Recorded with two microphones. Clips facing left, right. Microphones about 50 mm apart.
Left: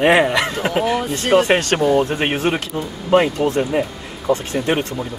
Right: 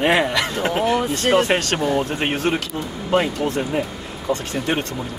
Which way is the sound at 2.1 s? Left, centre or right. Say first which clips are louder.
Left 2 dB; centre.